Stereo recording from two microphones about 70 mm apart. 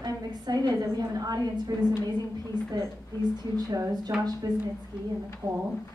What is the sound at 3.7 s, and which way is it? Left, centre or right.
Speech, right.